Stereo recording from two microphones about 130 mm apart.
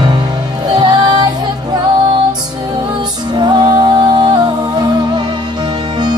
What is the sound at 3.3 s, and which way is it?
Music, 35° right (ahead or behind).